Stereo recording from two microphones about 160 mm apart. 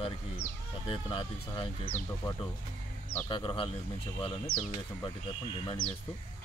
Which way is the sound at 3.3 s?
30° left (ahead or behind).